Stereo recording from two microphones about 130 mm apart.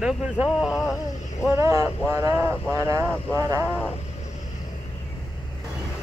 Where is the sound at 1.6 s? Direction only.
25° right (ahead or behind).